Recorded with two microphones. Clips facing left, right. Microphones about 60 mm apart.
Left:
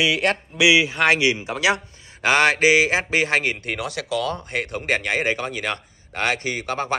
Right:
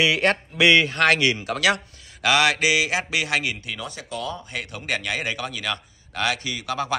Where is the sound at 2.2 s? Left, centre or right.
Left.